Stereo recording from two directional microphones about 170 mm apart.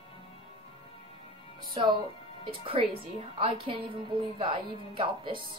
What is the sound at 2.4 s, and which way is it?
A woman's voice, 30° right (ahead or behind).